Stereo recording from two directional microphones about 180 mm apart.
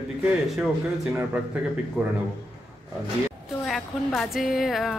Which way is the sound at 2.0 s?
10° right (ahead or behind).